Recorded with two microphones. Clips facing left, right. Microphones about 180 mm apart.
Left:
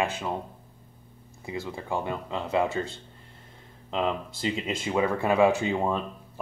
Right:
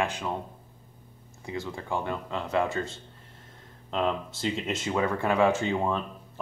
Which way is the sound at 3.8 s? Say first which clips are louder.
Even; centre (ahead or behind).